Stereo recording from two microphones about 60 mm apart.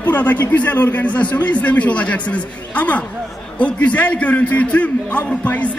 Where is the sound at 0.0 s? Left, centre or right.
Left.